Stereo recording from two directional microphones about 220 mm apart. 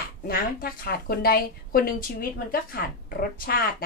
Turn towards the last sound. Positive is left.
turn(degrees=45)  # may be behind; listen again after turning